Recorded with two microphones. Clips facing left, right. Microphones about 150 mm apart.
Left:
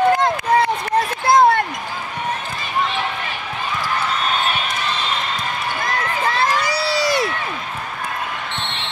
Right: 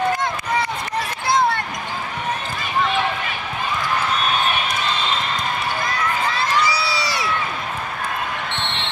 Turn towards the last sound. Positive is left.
turn(degrees=50)  # may be behind; listen again after turning